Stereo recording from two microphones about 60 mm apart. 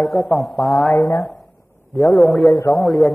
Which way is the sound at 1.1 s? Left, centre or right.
Centre.